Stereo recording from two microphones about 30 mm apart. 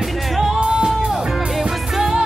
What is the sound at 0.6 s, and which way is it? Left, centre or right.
Music, right.